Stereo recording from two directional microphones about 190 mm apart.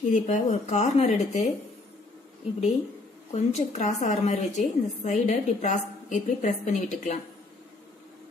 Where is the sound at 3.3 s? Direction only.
35° left (ahead or behind).